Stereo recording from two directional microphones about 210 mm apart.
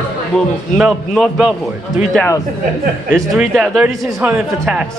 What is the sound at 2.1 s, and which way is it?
Speech, 10° left (ahead or behind).